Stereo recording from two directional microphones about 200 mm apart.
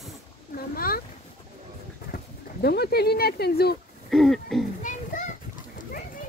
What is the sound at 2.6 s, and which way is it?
Speech, 50° left (ahead or behind).